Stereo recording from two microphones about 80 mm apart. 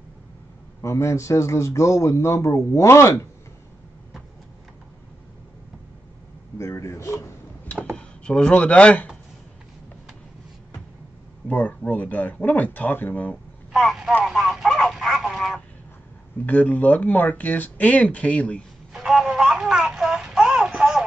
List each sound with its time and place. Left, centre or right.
0.7 s a man's voice: left
6.6 s a man's voice: left
7.9 s speech: centre
11.4 s speech: centre
13.7 s speech: centre
14.2 s a sound: centre
16.3 s speech: centre
18.9 s a sound: centre